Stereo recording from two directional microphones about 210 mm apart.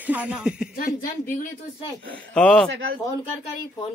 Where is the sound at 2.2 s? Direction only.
5° left (ahead or behind).